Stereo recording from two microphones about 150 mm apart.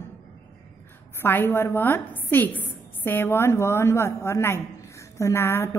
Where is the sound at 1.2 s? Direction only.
15° left (ahead or behind).